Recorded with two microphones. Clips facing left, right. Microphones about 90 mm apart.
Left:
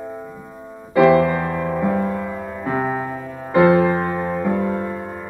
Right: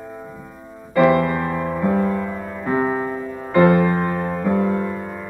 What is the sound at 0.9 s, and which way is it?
Music, centre (ahead or behind).